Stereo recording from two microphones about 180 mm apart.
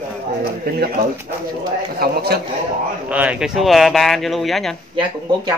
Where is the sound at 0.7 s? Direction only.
60° right (ahead or behind).